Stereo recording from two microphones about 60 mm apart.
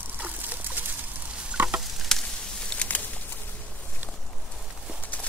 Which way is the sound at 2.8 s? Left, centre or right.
Left.